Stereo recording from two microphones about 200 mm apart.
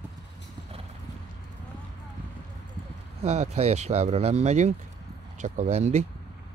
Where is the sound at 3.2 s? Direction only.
35° right (ahead or behind).